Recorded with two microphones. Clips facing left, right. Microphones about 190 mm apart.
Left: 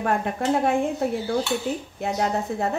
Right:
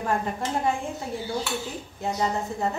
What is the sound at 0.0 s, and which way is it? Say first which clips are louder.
Speech: left 3 dB; 65° left (ahead or behind).